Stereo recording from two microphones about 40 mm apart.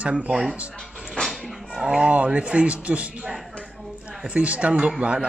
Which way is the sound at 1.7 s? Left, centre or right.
Right.